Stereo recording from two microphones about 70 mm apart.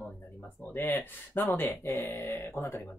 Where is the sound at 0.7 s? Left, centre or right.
Left.